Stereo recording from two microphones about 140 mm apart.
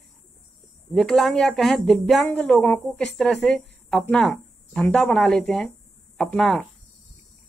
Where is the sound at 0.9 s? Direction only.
5° left (ahead or behind).